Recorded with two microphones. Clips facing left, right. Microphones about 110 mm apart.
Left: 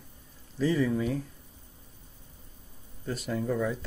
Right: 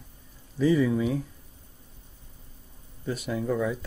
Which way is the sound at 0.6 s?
10° right (ahead or behind).